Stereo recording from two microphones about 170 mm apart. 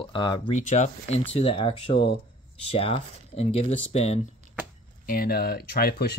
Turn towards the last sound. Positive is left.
turn(degrees=65)  # may be behind; listen again after turning